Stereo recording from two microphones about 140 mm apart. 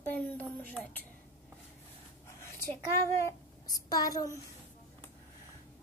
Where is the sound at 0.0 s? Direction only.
10° left (ahead or behind).